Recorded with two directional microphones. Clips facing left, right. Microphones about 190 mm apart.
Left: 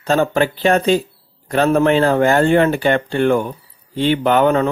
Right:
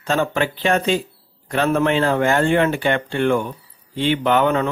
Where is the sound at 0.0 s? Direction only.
40° left (ahead or behind).